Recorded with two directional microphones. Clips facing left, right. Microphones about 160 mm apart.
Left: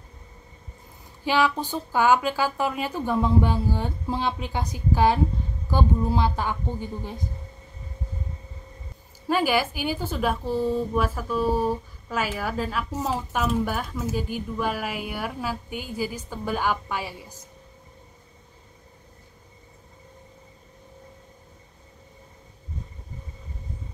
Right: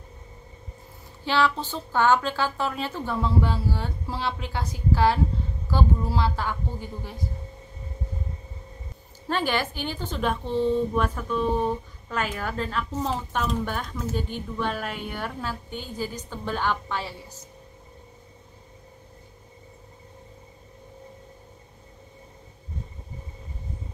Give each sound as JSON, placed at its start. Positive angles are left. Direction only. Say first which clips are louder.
{"t": 1.2, "sound": "speech", "louder": "left 1 dB", "side_deg": 10}
{"t": 9.3, "sound": "speech", "louder": "left 3 dB", "side_deg": 10}